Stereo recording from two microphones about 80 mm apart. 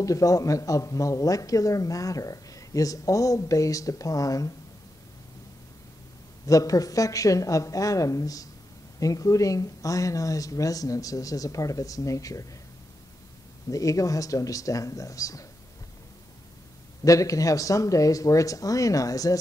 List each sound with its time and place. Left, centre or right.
0.0 s speech: left
6.4 s speech: left
13.7 s speech: left
17.0 s speech: left